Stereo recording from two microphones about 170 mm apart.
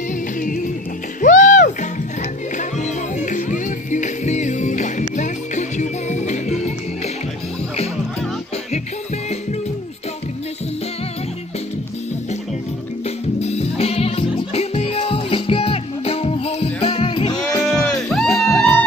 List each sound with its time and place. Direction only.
1.2 s music: 50° left (ahead or behind)
3.2 s music: 45° left (ahead or behind)
13.0 s music: 40° left (ahead or behind)
17.6 s music: 10° left (ahead or behind)
18.5 s music: 10° left (ahead or behind)